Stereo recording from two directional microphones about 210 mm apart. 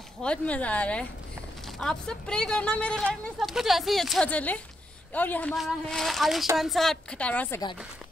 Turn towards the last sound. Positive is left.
turn(degrees=5)  # may be behind; listen again after turning